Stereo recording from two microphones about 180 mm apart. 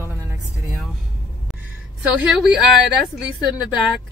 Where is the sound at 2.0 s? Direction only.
5° right (ahead or behind).